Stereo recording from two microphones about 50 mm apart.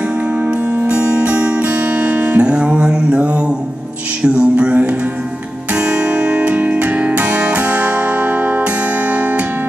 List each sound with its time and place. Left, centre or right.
0.4 s music: right
2.4 s mantra: right
4.2 s music: right